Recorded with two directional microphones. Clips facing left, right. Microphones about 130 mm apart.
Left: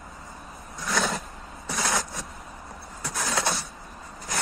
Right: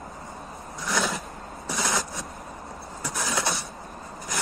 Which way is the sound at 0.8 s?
Centre (ahead or behind).